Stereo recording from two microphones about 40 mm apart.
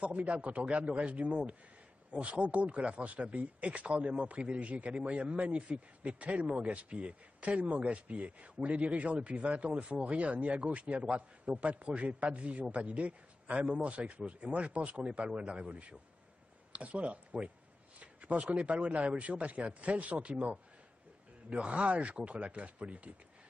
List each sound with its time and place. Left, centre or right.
0.0 s a man's voice: right